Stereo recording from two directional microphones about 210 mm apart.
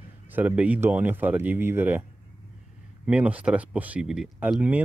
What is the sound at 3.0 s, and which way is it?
Speech, 5° right (ahead or behind).